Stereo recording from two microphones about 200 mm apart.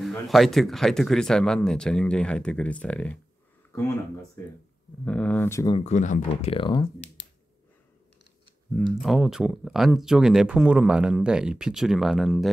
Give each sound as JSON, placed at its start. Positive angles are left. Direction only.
{"t": 0.0, "sound": "speech", "side_deg": 0}
{"t": 5.0, "sound": "speech", "side_deg": 5}
{"t": 5.8, "sound": "speech", "side_deg": 35}
{"t": 9.0, "sound": "speech", "side_deg": 0}